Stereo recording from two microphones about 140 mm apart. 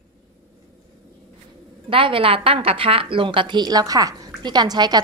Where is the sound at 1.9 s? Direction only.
40° right (ahead or behind).